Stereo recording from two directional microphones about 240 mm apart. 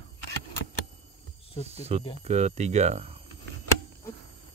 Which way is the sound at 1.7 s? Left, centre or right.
Right.